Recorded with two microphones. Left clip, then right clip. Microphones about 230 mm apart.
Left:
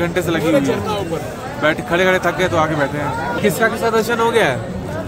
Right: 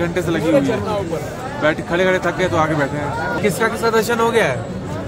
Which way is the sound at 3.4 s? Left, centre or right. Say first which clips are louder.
Left 3 dB; centre.